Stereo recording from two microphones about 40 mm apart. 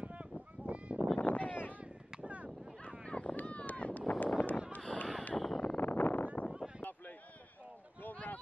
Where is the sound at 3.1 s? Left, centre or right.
Left.